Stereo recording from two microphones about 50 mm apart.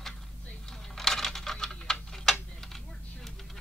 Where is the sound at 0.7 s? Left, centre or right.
Centre.